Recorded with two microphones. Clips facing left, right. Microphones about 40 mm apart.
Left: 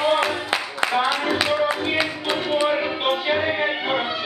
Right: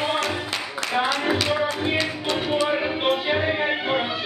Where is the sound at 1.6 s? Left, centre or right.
Centre.